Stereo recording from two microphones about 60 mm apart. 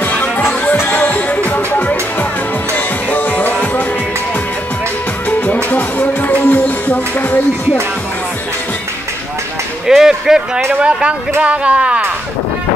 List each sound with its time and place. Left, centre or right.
0.0 s music: left
5.7 s music: left
9.8 s speech: centre